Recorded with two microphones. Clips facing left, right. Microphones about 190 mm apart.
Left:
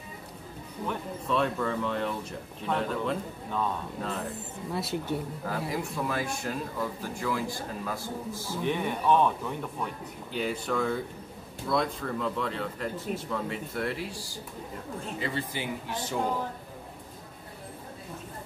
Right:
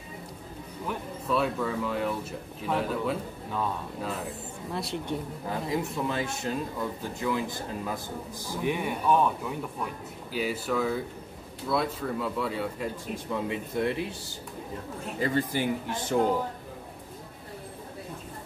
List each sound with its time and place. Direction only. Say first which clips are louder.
0.8 s speech: even; 5° right (ahead or behind)
5.5 s a man's voice: right 3 dB; 25° right (ahead or behind)
15.1 s speech: right 7 dB; 45° right (ahead or behind)